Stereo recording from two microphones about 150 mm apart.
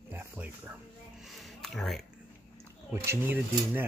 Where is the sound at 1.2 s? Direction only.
Centre (ahead or behind).